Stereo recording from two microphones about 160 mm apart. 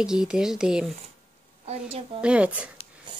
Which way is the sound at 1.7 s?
40° right (ahead or behind).